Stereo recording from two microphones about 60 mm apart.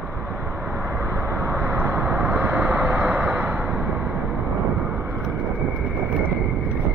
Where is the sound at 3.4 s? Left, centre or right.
Centre.